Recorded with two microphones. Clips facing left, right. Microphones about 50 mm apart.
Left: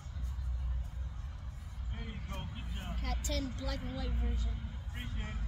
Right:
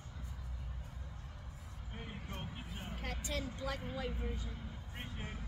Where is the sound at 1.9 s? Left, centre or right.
Centre.